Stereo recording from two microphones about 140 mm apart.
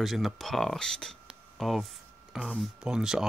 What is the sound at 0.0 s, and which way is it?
Speech, centre (ahead or behind).